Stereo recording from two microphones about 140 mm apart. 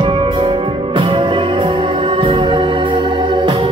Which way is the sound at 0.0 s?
40° right (ahead or behind).